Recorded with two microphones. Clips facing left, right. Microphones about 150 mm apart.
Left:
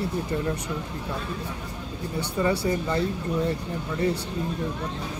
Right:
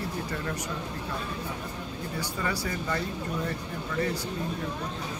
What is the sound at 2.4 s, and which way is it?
Speech, 25° left (ahead or behind).